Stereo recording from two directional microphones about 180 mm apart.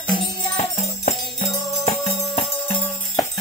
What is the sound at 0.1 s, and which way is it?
Music, 35° left (ahead or behind).